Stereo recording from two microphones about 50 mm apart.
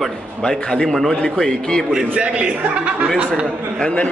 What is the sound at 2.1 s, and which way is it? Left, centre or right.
Speech, right.